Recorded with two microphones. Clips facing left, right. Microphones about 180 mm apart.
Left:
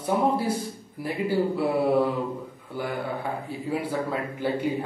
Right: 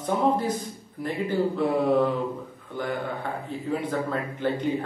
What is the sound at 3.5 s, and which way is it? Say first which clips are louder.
Speech: right 2 dB; 10° left (ahead or behind).